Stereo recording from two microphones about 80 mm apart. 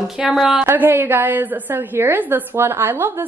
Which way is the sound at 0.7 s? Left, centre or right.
Right.